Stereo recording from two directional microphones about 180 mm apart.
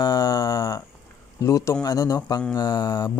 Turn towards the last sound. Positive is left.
turn(degrees=20)  # may be behind; listen again after turning